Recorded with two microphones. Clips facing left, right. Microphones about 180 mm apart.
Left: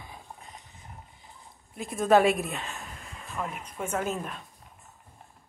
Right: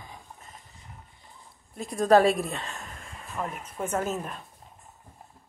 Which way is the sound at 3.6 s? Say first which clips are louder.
Right 3 dB; 10° right (ahead or behind).